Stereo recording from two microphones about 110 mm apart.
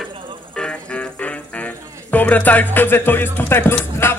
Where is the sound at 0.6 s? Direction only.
10° left (ahead or behind).